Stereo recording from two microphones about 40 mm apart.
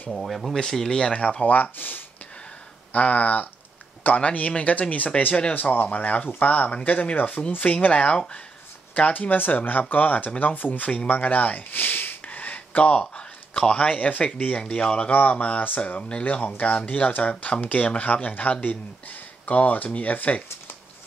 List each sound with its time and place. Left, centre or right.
0.1 s speech: centre
0.6 s speech: centre
1.1 s speech: left
1.4 s speech: left
2.9 s speech: left
5.5 s speech: left
11.1 s a sound: left
14.8 s speech: left
15.0 s speech: left
16.5 s speech: left